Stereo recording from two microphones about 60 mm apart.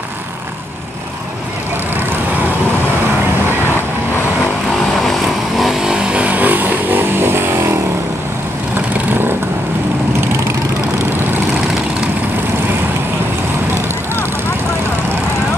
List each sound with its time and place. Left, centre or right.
5.0 s vehicle: centre
5.8 s vehicle: centre; by 7.7 s right